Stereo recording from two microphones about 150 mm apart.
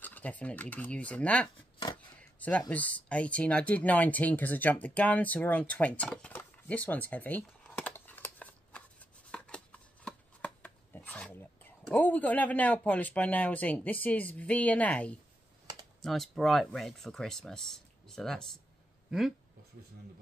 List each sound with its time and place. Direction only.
0.0 s speech: 10° left (ahead or behind)
2.7 s speech: 10° left (ahead or behind)
9.3 s chopping: 5° left (ahead or behind)
16.0 s speech: centre (ahead or behind)